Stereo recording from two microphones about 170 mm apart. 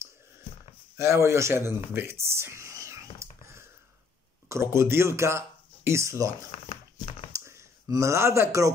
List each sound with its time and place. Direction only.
0.9 s speech: 15° right (ahead or behind)
2.2 s whispering: 15° right (ahead or behind)
4.5 s speech: 15° right (ahead or behind)